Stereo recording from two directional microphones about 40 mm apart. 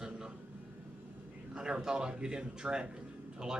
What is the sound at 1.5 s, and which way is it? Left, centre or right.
A man's voice, right.